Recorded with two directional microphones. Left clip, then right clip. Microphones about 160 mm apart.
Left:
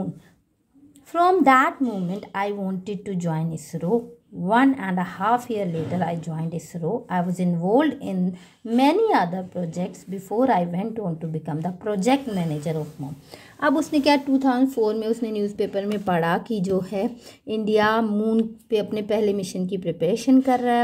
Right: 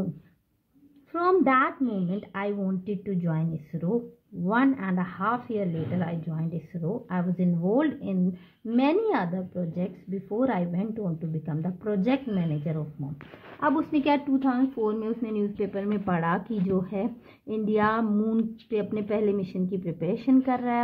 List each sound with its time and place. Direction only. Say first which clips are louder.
1.1 s a woman's voice: left 6 dB; 20° left (ahead or behind)